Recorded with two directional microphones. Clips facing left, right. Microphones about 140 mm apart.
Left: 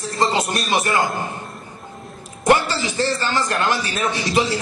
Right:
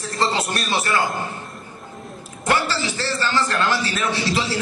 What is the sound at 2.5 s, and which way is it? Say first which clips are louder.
A man's voice: left 4 dB; 15° left (ahead or behind).